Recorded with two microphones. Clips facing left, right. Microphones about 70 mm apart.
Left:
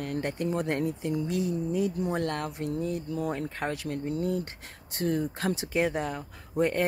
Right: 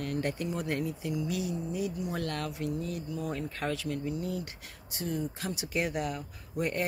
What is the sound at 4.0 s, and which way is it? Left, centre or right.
Speech, left.